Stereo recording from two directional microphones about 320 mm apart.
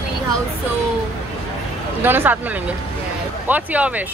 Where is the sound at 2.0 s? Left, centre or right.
Centre.